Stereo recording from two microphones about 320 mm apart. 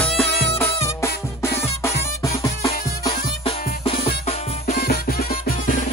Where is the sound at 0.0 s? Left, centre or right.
Centre.